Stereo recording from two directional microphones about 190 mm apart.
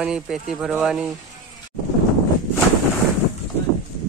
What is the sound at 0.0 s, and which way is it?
Speech, 5° right (ahead or behind).